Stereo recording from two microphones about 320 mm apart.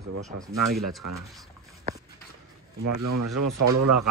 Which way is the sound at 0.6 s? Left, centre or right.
Right.